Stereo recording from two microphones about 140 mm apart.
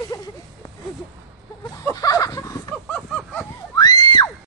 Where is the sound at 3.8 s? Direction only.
30° left (ahead or behind).